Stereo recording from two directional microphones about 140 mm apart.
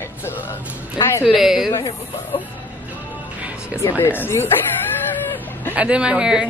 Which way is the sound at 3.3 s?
10° right (ahead or behind).